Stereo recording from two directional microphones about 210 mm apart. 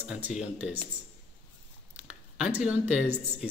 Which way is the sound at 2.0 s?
5° right (ahead or behind).